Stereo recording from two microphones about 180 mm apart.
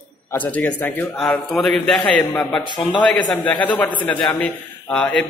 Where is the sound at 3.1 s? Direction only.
25° left (ahead or behind).